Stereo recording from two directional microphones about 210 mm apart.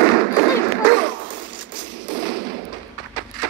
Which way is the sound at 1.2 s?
60° right (ahead or behind).